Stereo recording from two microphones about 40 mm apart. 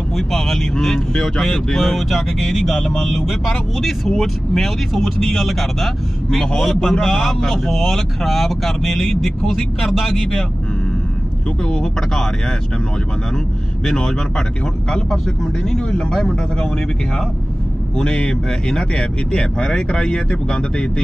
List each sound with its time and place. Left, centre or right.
0.1 s speech: centre
11.6 s speech: centre
13.8 s speech: centre
17.9 s speech: left